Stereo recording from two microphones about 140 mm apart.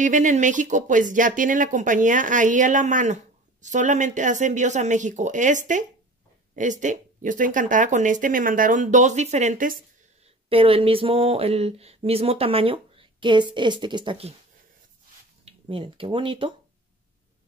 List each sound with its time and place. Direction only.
0.0 s speech: 65° right (ahead or behind); by 9.8 s 80° right
10.2 s speech: 40° right (ahead or behind)
15.4 s speech: 40° right (ahead or behind)